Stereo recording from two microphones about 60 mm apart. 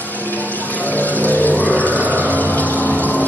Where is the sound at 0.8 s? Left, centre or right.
Left.